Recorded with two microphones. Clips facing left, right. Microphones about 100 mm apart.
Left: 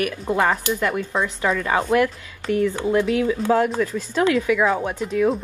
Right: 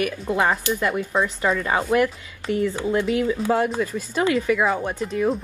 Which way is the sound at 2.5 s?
20° right (ahead or behind).